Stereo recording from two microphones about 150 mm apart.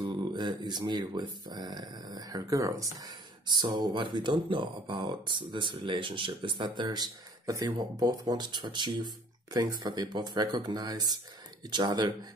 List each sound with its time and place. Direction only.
0.1 s speech: 30° right (ahead or behind)